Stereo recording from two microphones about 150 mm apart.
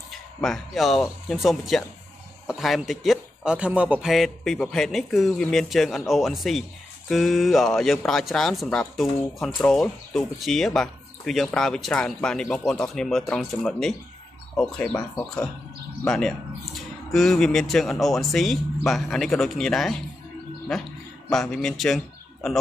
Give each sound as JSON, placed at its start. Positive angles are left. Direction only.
{"t": 0.1, "sound": "speech", "side_deg": 0}
{"t": 21.3, "sound": "a man's voice", "side_deg": 5}